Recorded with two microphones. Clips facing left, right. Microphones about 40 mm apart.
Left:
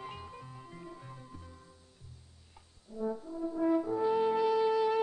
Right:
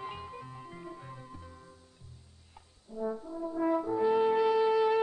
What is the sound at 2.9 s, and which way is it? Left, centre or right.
French horn, centre.